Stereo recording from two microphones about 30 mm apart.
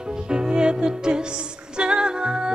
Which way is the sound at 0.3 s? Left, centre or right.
Right.